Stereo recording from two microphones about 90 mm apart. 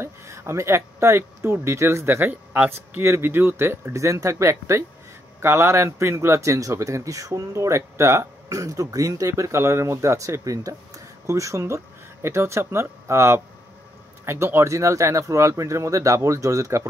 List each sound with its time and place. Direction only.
0.0 s speech: 30° right (ahead or behind)